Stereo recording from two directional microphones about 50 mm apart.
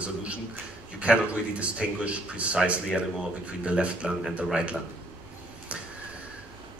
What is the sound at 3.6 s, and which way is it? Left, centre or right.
Speech, right.